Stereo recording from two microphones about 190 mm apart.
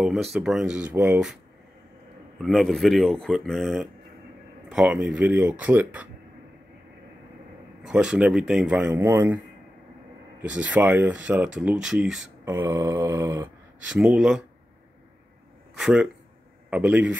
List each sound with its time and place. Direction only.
0.0 s speech: centre (ahead or behind)
2.4 s speech: centre (ahead or behind)
7.8 s speech: 5° right (ahead or behind)
10.4 s speech: 5° right (ahead or behind)
12.4 s speech: 15° right (ahead or behind)
13.8 s speech: 5° right (ahead or behind)
15.7 s speech: 5° right (ahead or behind)